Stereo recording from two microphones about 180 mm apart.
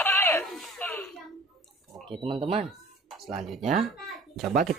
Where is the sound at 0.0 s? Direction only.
10° left (ahead or behind).